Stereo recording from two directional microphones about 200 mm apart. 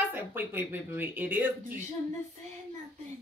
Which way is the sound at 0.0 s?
10° right (ahead or behind).